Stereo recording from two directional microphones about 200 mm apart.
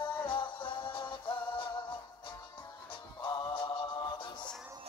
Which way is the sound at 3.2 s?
20° left (ahead or behind).